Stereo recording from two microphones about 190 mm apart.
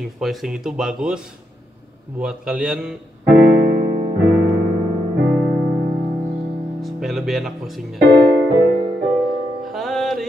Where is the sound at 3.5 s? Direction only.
45° right (ahead or behind).